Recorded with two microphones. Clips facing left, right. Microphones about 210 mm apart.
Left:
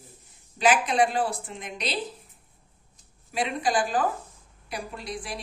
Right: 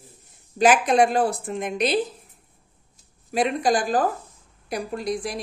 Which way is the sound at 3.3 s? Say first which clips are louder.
Right 5 dB; 45° right (ahead or behind).